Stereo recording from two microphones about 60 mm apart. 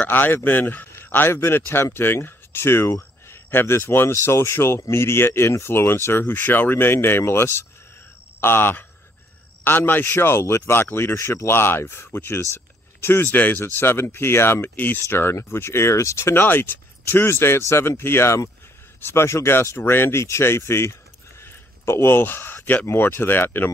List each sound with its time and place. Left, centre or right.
0.0 s speech: left
11.1 s speech: left
15.0 s speech: left
16.4 s speech: left
21.4 s a sound: left
22.8 s speech: left